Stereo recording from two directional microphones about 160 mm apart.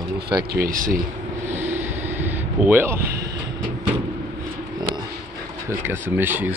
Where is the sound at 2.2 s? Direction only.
15° right (ahead or behind).